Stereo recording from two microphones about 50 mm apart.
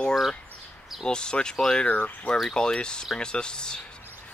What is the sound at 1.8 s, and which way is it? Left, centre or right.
Speech, left.